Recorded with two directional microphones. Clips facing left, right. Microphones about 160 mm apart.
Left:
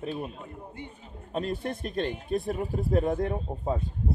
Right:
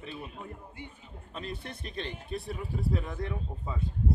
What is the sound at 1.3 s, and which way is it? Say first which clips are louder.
Speech: left 9 dB; 45° left (ahead or behind).